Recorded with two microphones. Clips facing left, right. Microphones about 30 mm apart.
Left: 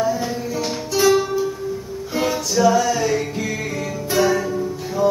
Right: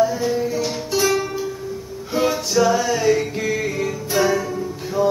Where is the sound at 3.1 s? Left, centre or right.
Centre.